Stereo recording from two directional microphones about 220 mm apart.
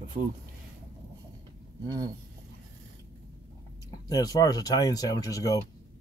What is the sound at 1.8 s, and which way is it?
Speech, 20° right (ahead or behind).